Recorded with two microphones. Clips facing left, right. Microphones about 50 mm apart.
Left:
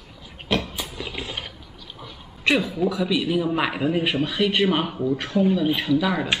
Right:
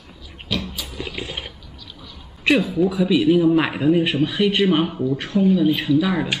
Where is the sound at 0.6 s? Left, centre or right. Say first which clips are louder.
Even; centre.